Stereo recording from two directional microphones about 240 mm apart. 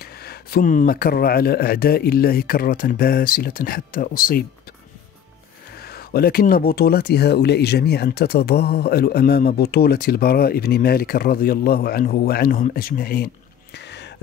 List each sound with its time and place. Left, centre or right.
0.0 s speech: left
5.8 s speech: left
13.7 s a sound: left